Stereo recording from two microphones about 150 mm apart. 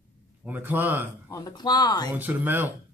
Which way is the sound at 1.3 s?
25° left (ahead or behind).